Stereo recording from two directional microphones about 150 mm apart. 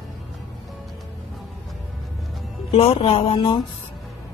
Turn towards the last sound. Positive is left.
turn(degrees=40)  # may be behind; listen again after turning